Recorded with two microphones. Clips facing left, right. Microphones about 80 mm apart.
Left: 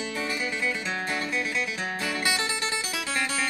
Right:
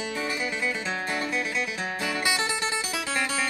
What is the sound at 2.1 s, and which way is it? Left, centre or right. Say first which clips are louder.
Music: right 2 dB; right.